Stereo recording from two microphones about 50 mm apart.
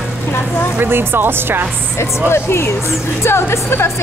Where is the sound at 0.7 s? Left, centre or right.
Right.